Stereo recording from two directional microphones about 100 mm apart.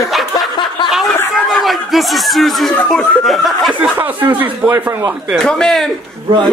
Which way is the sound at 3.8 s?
20° right (ahead or behind).